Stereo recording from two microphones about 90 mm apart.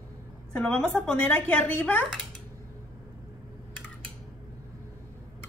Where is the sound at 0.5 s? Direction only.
10° left (ahead or behind).